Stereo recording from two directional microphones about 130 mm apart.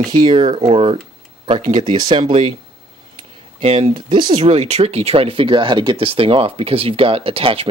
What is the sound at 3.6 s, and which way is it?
Speech, 55° right (ahead or behind).